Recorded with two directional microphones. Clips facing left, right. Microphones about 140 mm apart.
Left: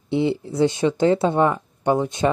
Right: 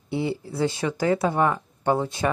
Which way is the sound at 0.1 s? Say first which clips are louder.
Left 6 dB; 20° left (ahead or behind).